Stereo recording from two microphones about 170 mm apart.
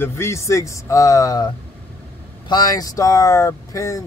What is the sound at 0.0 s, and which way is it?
Speech, 15° left (ahead or behind).